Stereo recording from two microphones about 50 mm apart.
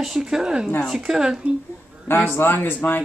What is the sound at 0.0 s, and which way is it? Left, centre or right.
A woman's voice, centre.